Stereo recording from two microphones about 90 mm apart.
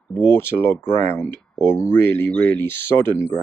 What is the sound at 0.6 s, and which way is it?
Speech, 25° left (ahead or behind).